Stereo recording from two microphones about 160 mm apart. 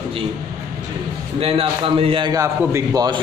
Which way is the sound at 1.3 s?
35° right (ahead or behind).